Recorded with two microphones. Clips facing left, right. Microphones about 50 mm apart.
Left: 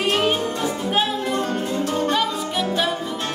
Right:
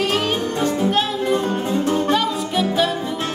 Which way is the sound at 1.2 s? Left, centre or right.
Centre.